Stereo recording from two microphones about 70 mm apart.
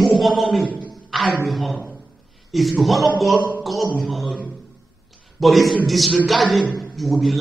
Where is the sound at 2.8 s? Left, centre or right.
Centre.